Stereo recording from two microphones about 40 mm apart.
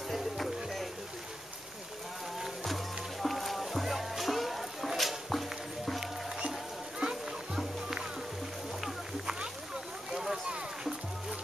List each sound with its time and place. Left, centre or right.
0.1 s music: centre
2.4 s music: centre
7.0 s music: centre
10.1 s a sound: centre